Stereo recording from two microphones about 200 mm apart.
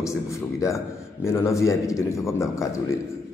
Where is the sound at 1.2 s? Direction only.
15° left (ahead or behind).